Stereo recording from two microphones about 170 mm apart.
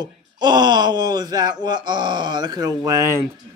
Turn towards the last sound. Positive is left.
turn(degrees=-15)  # may be behind; listen again after turning